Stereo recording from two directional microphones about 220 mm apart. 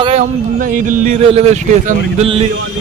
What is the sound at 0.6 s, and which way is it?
Speech, 40° right (ahead or behind).